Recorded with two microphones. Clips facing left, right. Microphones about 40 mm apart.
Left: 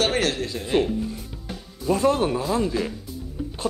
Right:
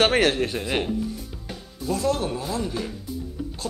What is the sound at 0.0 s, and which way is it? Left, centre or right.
Speech, right.